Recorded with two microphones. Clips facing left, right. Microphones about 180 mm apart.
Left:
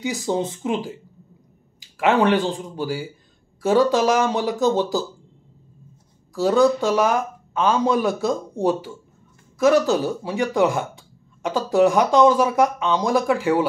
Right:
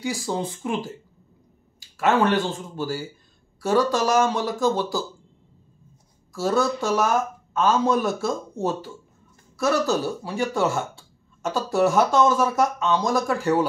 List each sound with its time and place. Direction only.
0.0 s speech: 20° left (ahead or behind)
6.4 s speech: 15° left (ahead or behind)